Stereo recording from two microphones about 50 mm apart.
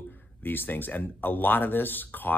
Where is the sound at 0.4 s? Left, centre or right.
Left.